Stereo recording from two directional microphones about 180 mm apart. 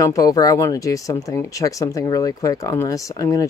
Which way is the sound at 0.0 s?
20° left (ahead or behind).